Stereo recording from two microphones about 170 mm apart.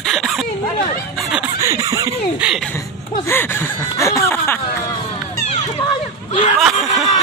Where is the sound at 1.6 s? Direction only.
20° right (ahead or behind).